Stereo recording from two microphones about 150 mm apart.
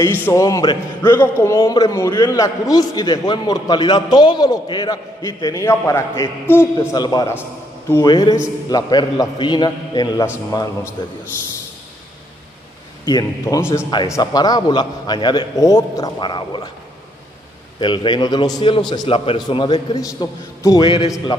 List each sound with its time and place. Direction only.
0.0 s a man's voice: 15° left (ahead or behind)
7.0 s a man's voice: 25° left (ahead or behind)
13.0 s a man's voice: 25° left (ahead or behind)
17.7 s a man's voice: 35° left (ahead or behind)